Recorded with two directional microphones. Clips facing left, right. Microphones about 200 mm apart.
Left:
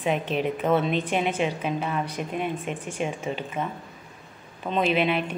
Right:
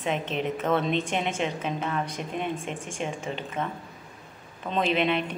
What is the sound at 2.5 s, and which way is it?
Speech, 30° right (ahead or behind).